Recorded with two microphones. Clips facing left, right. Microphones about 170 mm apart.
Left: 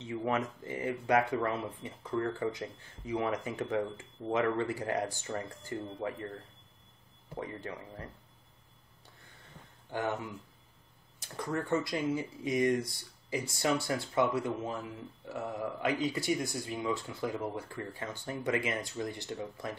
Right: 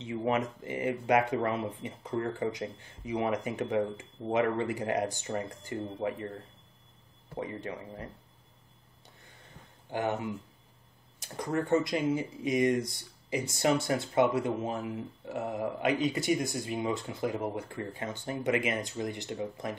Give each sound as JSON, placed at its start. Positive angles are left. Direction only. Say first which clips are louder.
{"t": 0.0, "sound": "speech", "louder": "right 3 dB", "side_deg": -20}
{"t": 7.3, "sound": "speech", "louder": "right 3 dB", "side_deg": -20}
{"t": 9.8, "sound": "speech", "louder": "right 3 dB", "side_deg": -20}
{"t": 11.3, "sound": "speech", "louder": "right 4 dB", "side_deg": -20}